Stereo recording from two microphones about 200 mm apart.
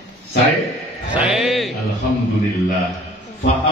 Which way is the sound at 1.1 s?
Centre (ahead or behind).